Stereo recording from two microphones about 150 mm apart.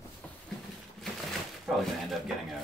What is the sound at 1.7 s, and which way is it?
Speech, centre (ahead or behind).